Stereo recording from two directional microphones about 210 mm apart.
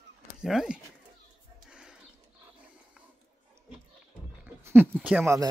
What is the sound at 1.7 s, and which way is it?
Bird, 5° right (ahead or behind).